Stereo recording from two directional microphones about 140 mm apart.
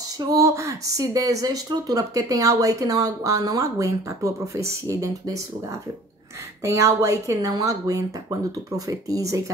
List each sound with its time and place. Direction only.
0.2 s speech: 25° right (ahead or behind)
6.6 s speech: 20° right (ahead or behind)